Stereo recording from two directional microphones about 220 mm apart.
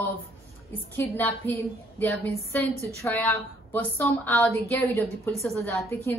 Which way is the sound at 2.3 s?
30° right (ahead or behind).